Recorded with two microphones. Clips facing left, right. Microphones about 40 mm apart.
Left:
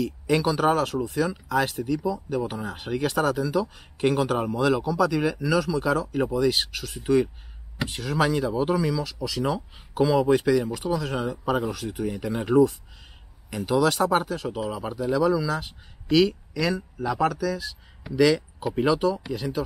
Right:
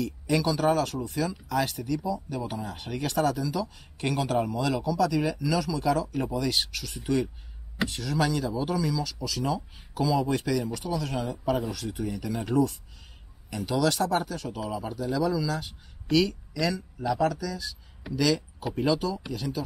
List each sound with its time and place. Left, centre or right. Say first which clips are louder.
0.0 s speech: left 3 dB; centre
18.1 s speech: left 6 dB; left
18.6 s speech: left 4 dB; centre
18.9 s speech: left 4 dB; centre